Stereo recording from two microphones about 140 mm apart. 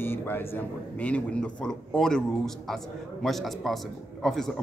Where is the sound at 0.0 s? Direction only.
15° left (ahead or behind).